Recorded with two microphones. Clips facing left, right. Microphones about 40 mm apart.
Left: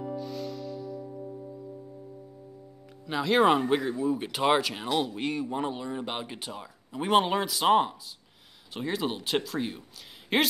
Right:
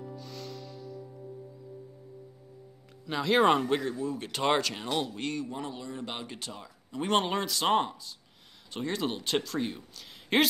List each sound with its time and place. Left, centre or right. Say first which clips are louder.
0.0 s music: left 8 dB; centre
1.0 s music: left 6 dB; left
3.1 s speech: left 1 dB; centre